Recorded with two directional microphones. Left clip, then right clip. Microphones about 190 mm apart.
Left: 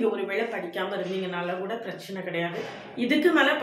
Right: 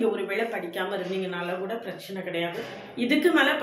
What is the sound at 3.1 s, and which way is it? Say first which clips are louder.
Speech: even; 5° right (ahead or behind).